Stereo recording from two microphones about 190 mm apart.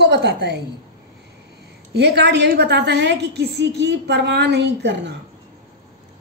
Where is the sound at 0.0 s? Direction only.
65° right (ahead or behind).